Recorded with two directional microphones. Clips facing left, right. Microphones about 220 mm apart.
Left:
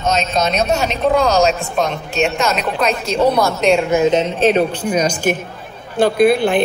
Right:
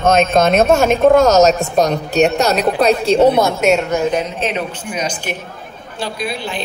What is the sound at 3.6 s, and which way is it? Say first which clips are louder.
Speech: even; 5° right (ahead or behind).